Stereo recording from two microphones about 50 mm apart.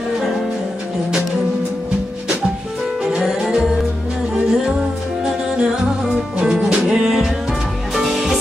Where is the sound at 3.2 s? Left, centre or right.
Centre.